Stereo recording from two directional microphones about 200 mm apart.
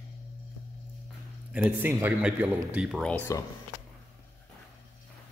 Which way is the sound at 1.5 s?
10° right (ahead or behind).